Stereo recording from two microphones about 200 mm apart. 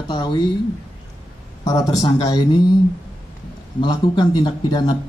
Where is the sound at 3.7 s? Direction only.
20° left (ahead or behind).